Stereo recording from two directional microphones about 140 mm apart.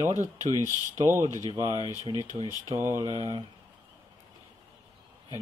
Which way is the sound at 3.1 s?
30° left (ahead or behind).